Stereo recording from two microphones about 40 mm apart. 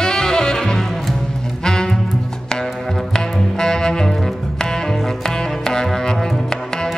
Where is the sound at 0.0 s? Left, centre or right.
Centre.